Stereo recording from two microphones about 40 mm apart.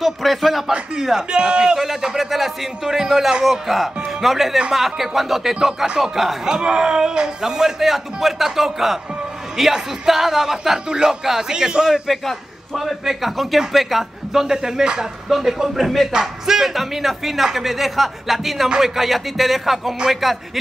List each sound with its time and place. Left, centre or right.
0.0 s speech: centre
0.9 s a man's voice: centre
12.1 s a man's voice: centre